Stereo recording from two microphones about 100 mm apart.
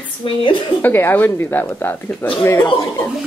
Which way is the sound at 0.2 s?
55° left (ahead or behind).